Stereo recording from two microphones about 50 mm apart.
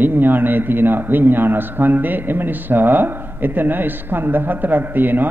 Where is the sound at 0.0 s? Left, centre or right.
Right.